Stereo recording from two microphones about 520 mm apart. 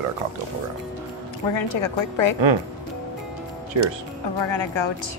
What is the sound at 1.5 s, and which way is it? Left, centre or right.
Speech, left.